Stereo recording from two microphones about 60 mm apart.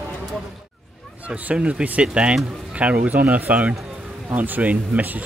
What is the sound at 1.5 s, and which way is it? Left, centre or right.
Speech, centre.